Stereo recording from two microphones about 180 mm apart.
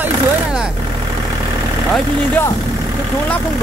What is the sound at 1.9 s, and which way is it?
Speech, 10° left (ahead or behind).